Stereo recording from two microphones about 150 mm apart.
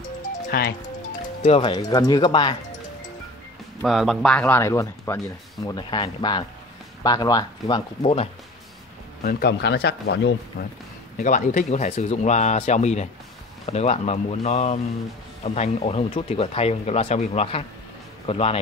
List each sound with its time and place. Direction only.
0.2 s music: 75° left (ahead or behind); by 0.7 s 90° left
1.0 s music: 50° left (ahead or behind)
1.6 s speech: 30° left (ahead or behind)
3.8 s speech: centre (ahead or behind); by 7.8 s 25° left (ahead or behind)
8.0 s speech: 40° left (ahead or behind)
9.2 s speech: 85° left
10.6 s speech: 60° left (ahead or behind); by 18.6 s 40° left (ahead or behind)